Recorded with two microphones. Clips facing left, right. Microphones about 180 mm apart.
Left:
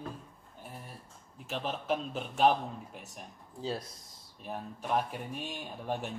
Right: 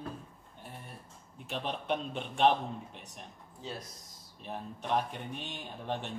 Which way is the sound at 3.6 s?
30° left (ahead or behind).